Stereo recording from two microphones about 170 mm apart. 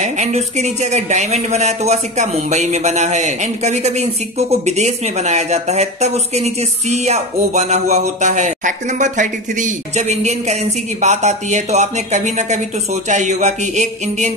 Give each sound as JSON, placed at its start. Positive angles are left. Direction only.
{"t": 0.0, "sound": "speech", "side_deg": -45}